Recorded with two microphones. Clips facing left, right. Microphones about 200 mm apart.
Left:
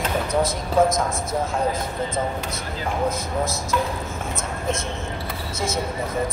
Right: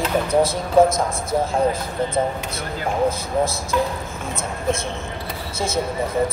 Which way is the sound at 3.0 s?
30° right (ahead or behind).